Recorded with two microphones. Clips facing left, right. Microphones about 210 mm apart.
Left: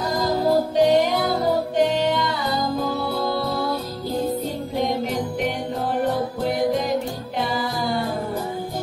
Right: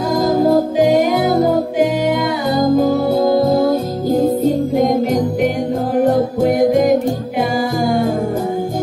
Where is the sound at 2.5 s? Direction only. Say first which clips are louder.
Right 14 dB; 45° right (ahead or behind).